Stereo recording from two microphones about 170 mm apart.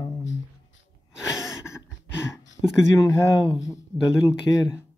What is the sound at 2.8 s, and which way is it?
Speech, 20° left (ahead or behind).